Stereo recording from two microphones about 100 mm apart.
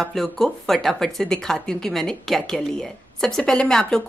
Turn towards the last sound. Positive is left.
turn(degrees=5)  # may be behind; listen again after turning